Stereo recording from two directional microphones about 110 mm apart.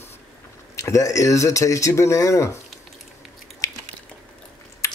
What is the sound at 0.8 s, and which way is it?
Speech, 30° left (ahead or behind).